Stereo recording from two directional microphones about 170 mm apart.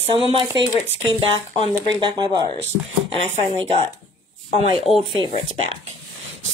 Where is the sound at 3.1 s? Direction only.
35° left (ahead or behind).